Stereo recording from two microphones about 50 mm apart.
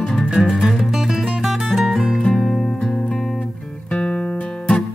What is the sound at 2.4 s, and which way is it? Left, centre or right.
Music, centre.